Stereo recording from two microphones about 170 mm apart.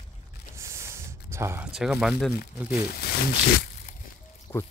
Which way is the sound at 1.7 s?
5° right (ahead or behind).